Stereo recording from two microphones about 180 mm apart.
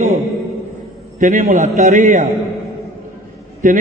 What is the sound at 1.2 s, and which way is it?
A man's voice, 45° right (ahead or behind).